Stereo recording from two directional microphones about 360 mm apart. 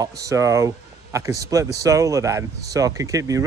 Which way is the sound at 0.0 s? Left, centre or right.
Centre.